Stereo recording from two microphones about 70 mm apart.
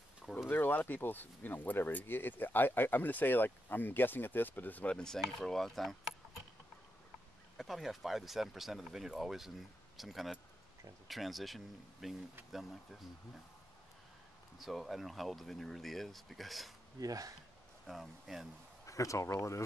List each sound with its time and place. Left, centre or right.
0.5 s speech: left
4.9 s speech: centre
7.5 s speech: centre
14.6 s speech: centre
17.0 s speech: right
17.8 s speech: centre
18.9 s speech: left